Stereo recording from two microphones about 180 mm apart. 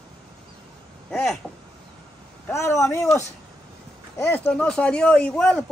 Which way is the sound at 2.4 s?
15° left (ahead or behind).